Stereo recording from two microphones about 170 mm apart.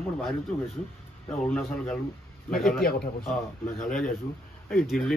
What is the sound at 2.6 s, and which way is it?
Speech, 5° left (ahead or behind).